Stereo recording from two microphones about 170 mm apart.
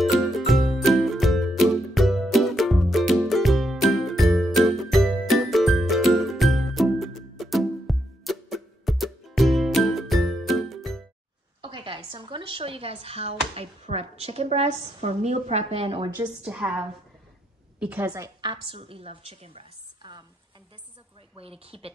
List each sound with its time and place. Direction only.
0.0 s music: centre (ahead or behind)
11.6 s speech: 30° right (ahead or behind)
16.2 s a woman's voice: 5° right (ahead or behind); by 20.2 s 25° right (ahead or behind)
21.4 s a woman's voice: 35° right (ahead or behind)